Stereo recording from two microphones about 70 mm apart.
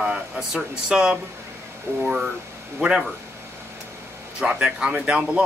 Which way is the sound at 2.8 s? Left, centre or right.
Centre.